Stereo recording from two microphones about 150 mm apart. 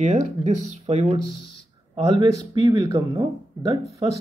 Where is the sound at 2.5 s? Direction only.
25° right (ahead or behind).